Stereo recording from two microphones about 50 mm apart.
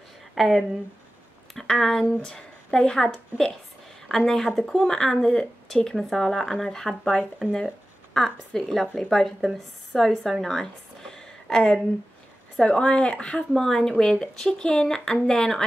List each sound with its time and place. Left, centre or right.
0.3 s speech: centre
10.3 s a sound: centre
12.5 s speech: centre
13.5 s speech: centre